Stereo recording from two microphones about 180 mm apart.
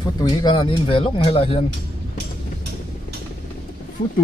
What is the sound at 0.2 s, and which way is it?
Speech, 25° left (ahead or behind).